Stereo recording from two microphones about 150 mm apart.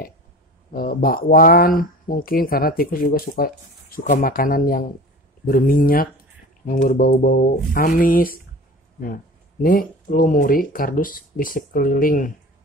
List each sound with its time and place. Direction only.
0.7 s speech: 75° left (ahead or behind)